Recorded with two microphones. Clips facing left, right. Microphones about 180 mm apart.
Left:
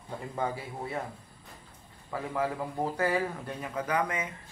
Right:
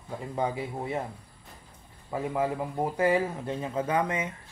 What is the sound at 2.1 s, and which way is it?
Speech, 20° right (ahead or behind).